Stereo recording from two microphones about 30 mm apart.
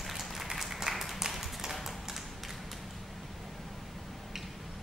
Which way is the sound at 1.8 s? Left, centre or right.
Centre.